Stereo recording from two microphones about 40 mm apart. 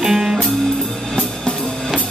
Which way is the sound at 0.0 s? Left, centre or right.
Centre.